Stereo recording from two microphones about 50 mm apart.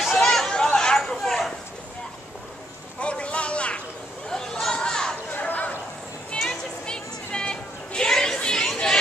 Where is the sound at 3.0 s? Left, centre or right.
Left.